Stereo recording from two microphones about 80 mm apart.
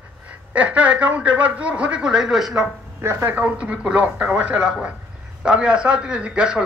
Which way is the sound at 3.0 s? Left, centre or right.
Right.